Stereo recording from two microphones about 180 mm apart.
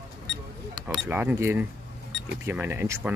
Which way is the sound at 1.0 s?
10° right (ahead or behind).